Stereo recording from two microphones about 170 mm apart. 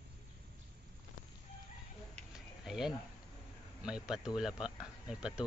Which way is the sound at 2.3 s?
5° right (ahead or behind).